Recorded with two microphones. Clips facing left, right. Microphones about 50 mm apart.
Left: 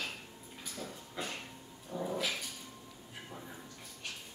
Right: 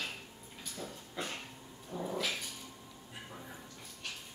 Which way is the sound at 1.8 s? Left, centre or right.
Centre.